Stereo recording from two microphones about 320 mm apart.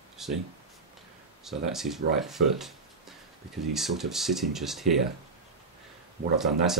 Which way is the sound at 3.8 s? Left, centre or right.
Centre.